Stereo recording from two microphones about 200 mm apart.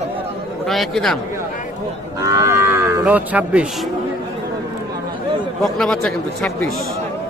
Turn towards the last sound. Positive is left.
turn(degrees=5)  # may be behind; listen again after turning